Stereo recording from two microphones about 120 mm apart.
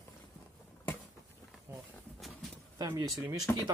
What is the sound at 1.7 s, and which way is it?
Speech, 20° right (ahead or behind).